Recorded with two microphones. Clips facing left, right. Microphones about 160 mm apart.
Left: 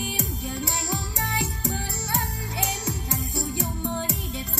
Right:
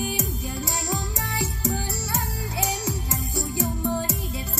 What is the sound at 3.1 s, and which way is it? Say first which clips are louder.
Music: even; 25° right (ahead or behind).